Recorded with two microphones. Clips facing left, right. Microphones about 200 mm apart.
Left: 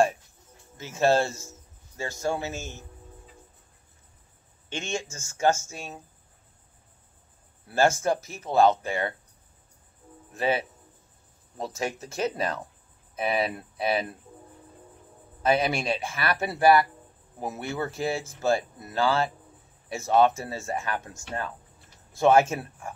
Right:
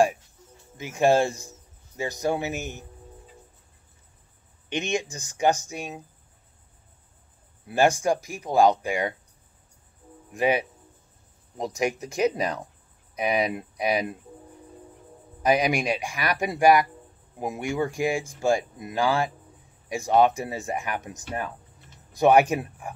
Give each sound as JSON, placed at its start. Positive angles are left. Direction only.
{"t": 0.7, "sound": "speech", "side_deg": -15}
{"t": 4.6, "sound": "speech", "side_deg": -15}
{"t": 7.6, "sound": "speech", "side_deg": -15}
{"t": 10.3, "sound": "speech", "side_deg": -15}
{"t": 15.4, "sound": "speech", "side_deg": -15}